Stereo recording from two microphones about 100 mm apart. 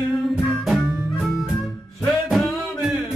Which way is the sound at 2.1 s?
Centre (ahead or behind).